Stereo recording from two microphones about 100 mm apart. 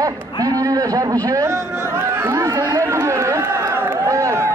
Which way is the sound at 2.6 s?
30° right (ahead or behind).